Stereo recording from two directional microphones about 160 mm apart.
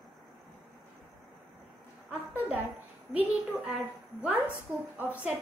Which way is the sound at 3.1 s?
5° right (ahead or behind).